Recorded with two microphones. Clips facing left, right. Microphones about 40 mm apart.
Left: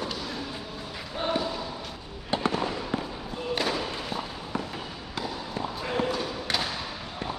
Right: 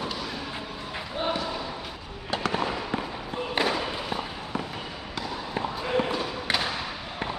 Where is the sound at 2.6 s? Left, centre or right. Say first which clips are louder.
Right 1 dB; centre.